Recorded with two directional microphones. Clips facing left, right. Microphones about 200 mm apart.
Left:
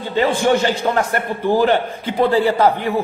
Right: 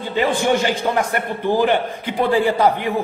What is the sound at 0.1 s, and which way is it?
A man's voice, 15° right (ahead or behind).